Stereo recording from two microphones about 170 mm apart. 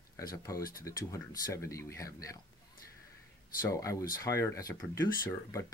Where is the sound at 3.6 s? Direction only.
20° left (ahead or behind).